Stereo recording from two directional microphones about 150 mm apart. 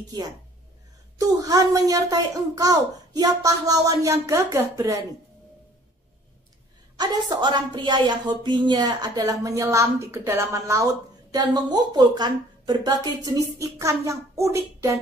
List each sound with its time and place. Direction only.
1.2 s a woman's voice: 25° right (ahead or behind)
7.0 s a woman's voice: 30° right (ahead or behind)